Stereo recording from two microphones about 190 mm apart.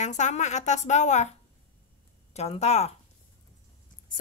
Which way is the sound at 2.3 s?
35° left (ahead or behind).